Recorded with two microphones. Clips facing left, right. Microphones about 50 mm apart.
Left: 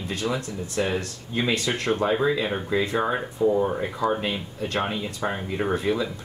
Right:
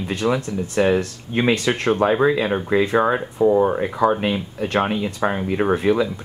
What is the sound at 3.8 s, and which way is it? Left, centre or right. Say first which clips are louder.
Speech: right 6 dB; right.